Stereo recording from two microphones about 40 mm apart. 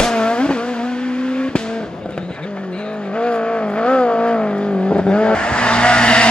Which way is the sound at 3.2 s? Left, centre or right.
Left.